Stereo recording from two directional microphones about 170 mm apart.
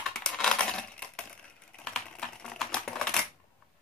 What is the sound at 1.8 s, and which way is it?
Typing, 5° left (ahead or behind).